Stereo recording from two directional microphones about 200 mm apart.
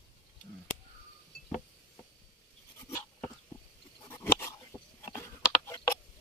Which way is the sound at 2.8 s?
10° left (ahead or behind).